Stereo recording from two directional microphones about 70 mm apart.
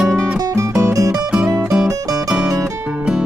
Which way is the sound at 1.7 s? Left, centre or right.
Centre.